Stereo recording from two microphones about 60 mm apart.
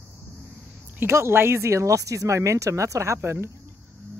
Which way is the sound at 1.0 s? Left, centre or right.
Right.